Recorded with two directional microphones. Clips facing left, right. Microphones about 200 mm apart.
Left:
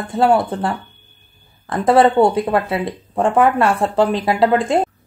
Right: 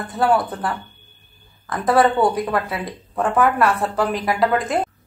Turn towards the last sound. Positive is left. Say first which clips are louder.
# left 4 dB
turn(degrees=25)  # may be behind; listen again after turning